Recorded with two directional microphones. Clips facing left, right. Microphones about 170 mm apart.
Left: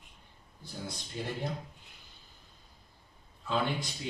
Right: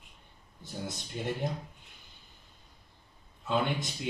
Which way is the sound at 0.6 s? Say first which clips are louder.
Right 3 dB; 20° right (ahead or behind).